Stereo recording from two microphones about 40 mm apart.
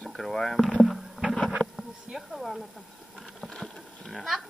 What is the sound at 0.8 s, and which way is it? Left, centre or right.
Rowboat, centre.